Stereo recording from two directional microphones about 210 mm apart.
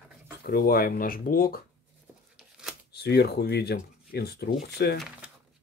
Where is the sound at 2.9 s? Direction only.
50° left (ahead or behind).